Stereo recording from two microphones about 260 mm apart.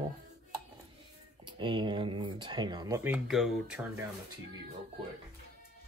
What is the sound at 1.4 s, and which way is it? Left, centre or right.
Speech, centre.